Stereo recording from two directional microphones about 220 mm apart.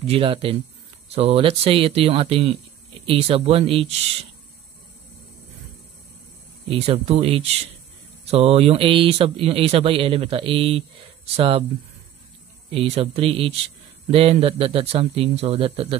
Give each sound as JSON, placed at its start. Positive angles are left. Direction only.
{"t": 0.0, "sound": "speech", "side_deg": -25}
{"t": 6.7, "sound": "speech", "side_deg": -25}
{"t": 12.7, "sound": "speech", "side_deg": -25}